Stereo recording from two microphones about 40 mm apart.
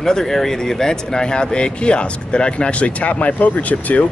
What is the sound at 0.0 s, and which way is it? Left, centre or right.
Speech, centre.